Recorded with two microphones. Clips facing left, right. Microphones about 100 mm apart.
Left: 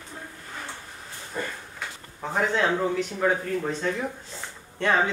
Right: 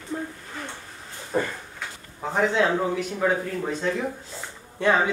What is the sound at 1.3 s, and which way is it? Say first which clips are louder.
Speech: right 7 dB; 60° right (ahead or behind).